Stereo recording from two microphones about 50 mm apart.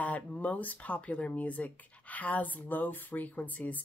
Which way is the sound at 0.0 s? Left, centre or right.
Left.